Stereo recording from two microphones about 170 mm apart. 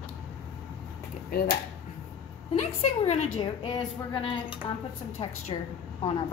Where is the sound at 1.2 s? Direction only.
65° left (ahead or behind).